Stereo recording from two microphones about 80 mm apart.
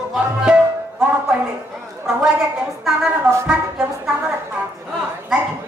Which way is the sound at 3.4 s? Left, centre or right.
Centre.